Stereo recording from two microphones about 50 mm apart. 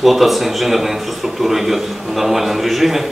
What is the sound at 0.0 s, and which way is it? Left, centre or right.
A man's voice, centre.